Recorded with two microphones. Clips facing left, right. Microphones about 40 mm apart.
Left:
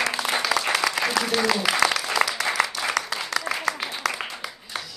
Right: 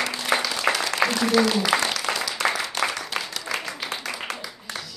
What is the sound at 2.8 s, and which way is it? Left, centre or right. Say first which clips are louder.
Applause: right 2 dB; right.